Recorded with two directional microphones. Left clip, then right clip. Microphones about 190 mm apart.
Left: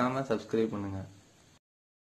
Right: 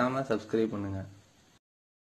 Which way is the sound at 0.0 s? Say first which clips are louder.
Right 1 dB; 10° right (ahead or behind).